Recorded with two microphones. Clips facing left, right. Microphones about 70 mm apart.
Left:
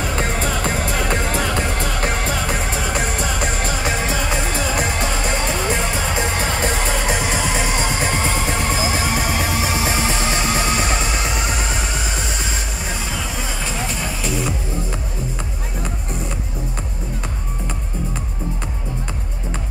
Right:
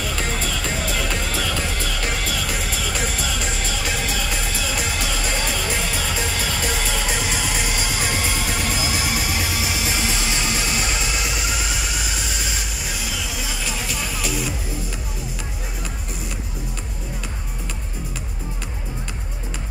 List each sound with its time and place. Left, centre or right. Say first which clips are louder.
0.0 s music: left 4 dB; left
12.8 s vehicle: left 3 dB; left